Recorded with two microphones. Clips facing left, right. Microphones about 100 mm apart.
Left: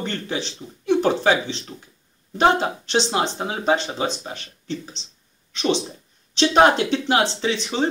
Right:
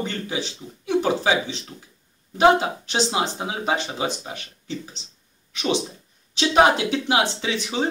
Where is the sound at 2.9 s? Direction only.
10° right (ahead or behind).